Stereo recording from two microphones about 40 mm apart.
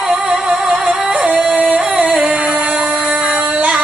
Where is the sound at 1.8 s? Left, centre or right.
Centre.